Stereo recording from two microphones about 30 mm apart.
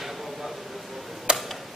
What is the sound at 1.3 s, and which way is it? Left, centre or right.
Tick-tock, right.